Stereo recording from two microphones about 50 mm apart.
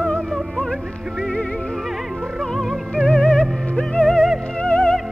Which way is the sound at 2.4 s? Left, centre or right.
Centre.